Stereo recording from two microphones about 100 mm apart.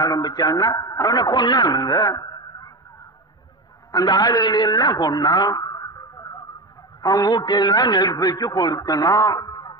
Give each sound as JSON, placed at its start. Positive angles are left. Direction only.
{"t": 0.0, "sound": "a man's voice", "side_deg": 40}
{"t": 3.9, "sound": "a man's voice", "side_deg": 45}